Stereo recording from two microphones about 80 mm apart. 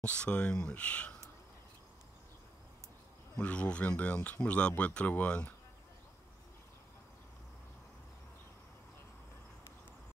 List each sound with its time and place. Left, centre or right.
0.0 s speech: centre
3.3 s speech: centre